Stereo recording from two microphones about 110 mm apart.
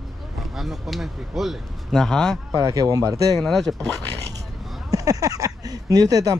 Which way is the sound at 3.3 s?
Centre (ahead or behind).